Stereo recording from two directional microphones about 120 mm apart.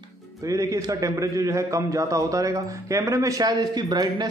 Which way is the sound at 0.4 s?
30° right (ahead or behind).